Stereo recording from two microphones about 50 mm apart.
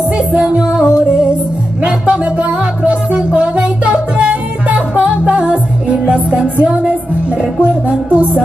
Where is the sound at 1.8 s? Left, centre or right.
Right.